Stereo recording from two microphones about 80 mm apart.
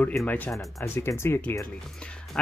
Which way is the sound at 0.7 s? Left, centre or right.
Left.